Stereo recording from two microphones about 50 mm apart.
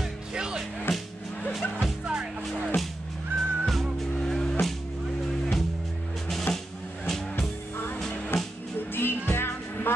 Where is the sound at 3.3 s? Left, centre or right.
Centre.